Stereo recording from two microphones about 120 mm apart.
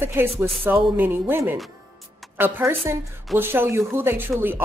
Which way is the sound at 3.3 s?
20° right (ahead or behind).